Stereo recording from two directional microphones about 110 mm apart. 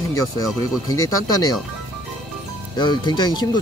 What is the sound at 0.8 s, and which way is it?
Speech, 30° left (ahead or behind).